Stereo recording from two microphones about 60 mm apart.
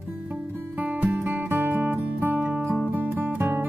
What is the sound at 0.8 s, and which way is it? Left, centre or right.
Music, right.